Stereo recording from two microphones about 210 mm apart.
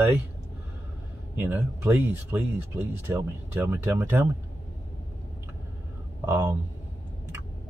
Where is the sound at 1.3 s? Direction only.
10° right (ahead or behind).